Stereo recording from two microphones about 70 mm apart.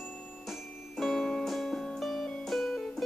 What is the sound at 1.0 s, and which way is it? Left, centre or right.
Music, centre.